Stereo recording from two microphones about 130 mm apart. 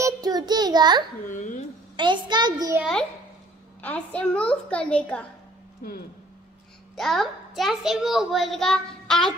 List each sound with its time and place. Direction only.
0.0 s child singing: 30° right (ahead or behind)
1.3 s a sound: 75° left (ahead or behind)
2.0 s a child's voice: 35° right (ahead or behind)
2.8 s a child's voice: 5° left (ahead or behind)
7.0 s a child's voice: centre (ahead or behind)